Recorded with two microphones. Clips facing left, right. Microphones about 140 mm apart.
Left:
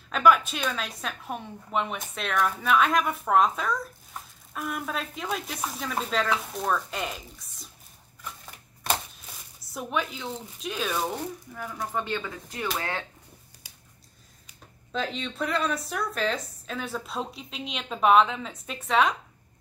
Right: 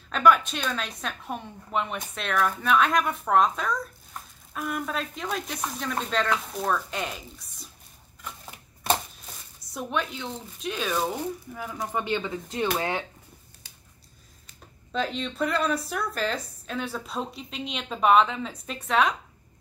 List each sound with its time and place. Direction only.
0.1 s a woman's voice: 5° left (ahead or behind)
9.8 s a woman's voice: centre (ahead or behind); by 13.0 s 20° right (ahead or behind)
14.9 s a woman's voice: centre (ahead or behind)